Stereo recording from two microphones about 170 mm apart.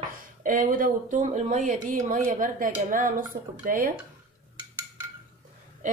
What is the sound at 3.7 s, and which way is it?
Speech, 55° right (ahead or behind).